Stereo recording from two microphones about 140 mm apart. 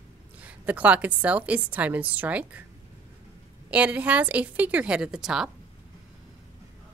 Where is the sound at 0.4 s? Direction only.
10° right (ahead or behind).